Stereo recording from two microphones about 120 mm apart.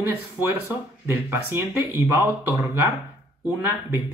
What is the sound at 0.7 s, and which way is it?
Speech, 20° right (ahead or behind).